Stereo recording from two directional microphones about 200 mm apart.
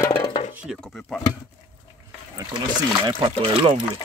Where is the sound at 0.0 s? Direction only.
15° left (ahead or behind).